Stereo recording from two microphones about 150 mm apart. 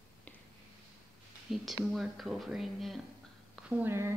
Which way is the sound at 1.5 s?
Centre (ahead or behind).